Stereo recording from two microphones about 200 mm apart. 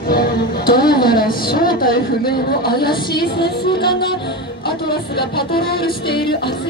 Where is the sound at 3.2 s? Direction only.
55° left (ahead or behind).